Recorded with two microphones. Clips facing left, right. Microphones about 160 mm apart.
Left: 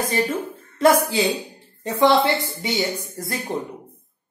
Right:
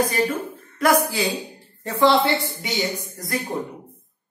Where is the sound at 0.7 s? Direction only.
25° left (ahead or behind).